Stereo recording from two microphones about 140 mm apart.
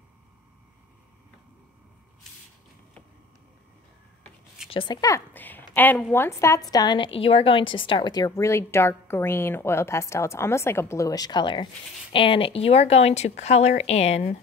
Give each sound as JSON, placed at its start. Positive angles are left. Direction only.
{"t": 4.6, "sound": "a woman's voice", "side_deg": 35}
{"t": 5.3, "sound": "a sound", "side_deg": 15}
{"t": 6.1, "sound": "a woman's voice", "side_deg": 20}